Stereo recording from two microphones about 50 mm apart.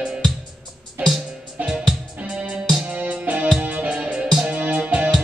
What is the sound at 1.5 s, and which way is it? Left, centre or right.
Music, right.